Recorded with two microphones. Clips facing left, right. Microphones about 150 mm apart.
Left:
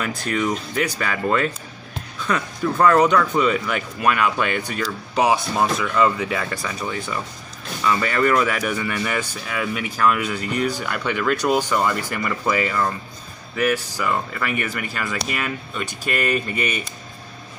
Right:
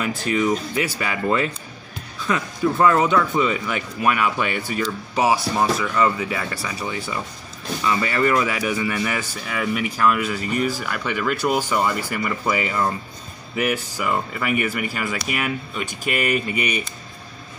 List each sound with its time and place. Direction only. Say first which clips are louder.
0.0 s speech: right 2 dB; 5° right (ahead or behind)